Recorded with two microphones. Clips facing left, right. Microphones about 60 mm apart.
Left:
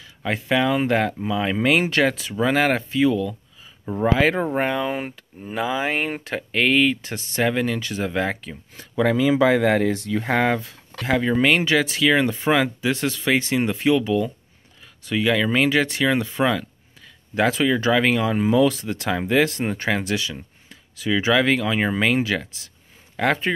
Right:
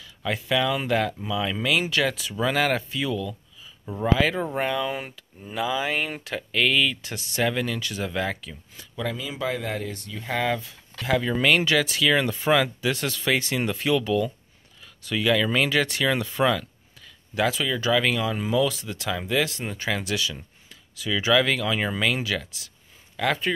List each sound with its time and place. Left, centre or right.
0.0 s speech: left
8.9 s speech: left
10.2 s speech: left
11.1 s speech: left
17.4 s speech: left